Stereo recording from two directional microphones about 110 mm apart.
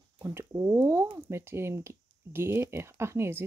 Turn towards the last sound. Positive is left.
turn(degrees=-25)  # may be behind; listen again after turning